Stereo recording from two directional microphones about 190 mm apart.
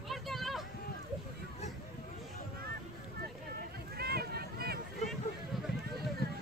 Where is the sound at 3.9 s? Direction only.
55° right (ahead or behind).